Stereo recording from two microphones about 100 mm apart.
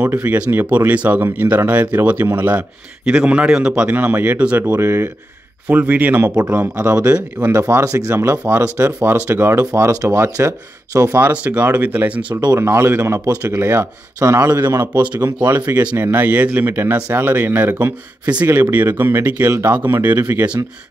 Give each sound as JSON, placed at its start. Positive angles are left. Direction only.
{"t": 0.0, "sound": "speech", "side_deg": -20}
{"t": 12.5, "sound": "speech", "side_deg": -25}